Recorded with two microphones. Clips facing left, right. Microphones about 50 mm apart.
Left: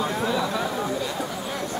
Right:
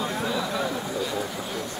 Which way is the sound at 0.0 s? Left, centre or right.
Centre.